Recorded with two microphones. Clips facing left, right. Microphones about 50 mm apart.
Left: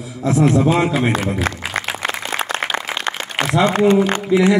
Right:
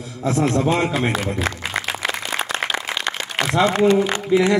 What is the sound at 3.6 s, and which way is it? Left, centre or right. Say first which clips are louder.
Speech: left 3 dB; left.